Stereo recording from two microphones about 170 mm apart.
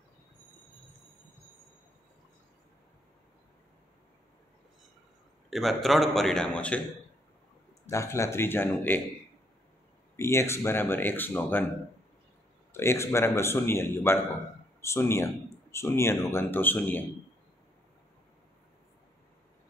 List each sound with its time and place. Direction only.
5.5 s a man's voice: centre (ahead or behind)
7.8 s speech: 15° left (ahead or behind)
10.1 s speech: 15° left (ahead or behind)
12.7 s speech: 15° left (ahead or behind)